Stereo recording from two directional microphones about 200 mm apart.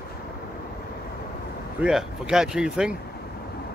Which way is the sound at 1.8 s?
Centre (ahead or behind).